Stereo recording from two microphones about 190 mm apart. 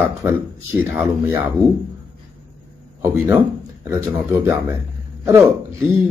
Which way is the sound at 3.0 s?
15° right (ahead or behind).